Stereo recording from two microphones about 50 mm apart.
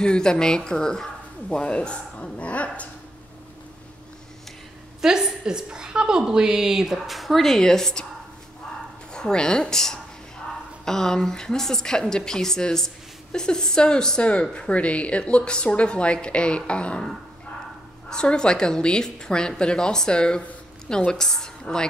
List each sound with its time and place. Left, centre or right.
0.0 s a woman's voice: centre
5.0 s a woman's voice: centre
9.1 s a woman's voice: centre
18.1 s a woman's voice: centre
21.7 s speech: left